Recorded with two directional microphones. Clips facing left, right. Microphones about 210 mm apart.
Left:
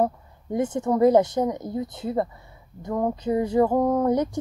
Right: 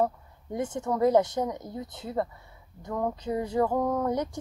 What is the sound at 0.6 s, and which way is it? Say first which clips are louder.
Speech: left 6 dB; 15° left (ahead or behind).